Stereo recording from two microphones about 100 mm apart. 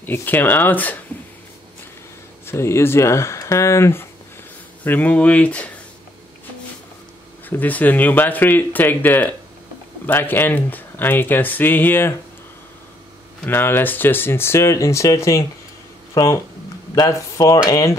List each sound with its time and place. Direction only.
0.0 s speech: 20° left (ahead or behind)
2.4 s speech: 25° left (ahead or behind)
7.4 s speech: 15° left (ahead or behind)
13.5 s speech: 20° left (ahead or behind)